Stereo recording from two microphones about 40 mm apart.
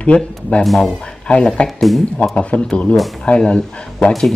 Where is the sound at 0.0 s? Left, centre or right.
Left.